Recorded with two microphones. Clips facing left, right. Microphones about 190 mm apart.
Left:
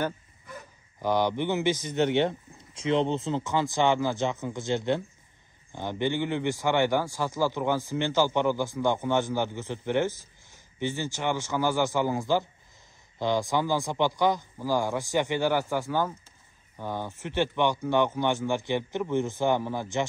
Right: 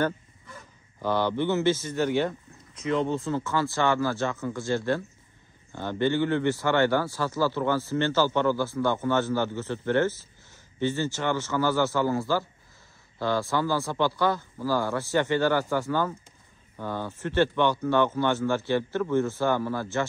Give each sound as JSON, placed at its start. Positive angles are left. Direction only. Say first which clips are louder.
{"t": 1.0, "sound": "a man's voice", "louder": "even", "side_deg": 15}